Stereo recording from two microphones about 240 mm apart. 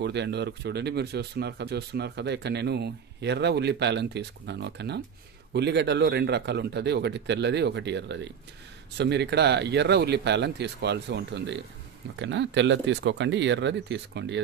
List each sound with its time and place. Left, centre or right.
0.0 s speech: right